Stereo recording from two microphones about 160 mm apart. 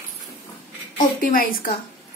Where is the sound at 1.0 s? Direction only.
60° left (ahead or behind).